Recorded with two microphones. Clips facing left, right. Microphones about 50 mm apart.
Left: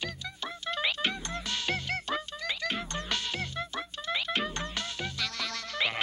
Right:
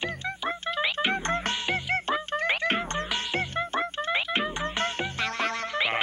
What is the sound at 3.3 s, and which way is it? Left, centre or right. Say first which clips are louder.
Music: right 7 dB; right.